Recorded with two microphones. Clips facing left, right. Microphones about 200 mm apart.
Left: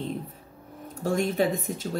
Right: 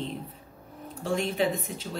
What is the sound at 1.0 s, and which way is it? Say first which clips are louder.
Speech: left 2 dB; 45° left (ahead or behind).